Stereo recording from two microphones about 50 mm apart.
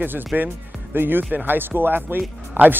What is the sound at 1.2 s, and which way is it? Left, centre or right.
Speech, right.